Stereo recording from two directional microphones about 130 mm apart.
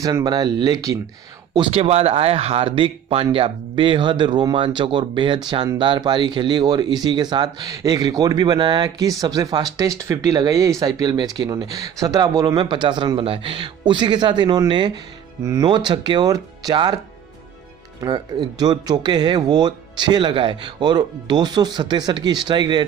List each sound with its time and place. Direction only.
0.0 s speech: 30° right (ahead or behind)
1.7 s speech: 50° right (ahead or behind); by 16.9 s 35° right (ahead or behind)
18.0 s speech: 30° right (ahead or behind)